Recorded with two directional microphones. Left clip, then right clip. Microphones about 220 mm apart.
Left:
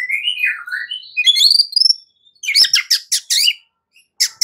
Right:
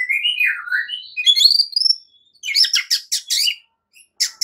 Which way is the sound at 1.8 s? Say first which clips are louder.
Left 4 dB; centre (ahead or behind).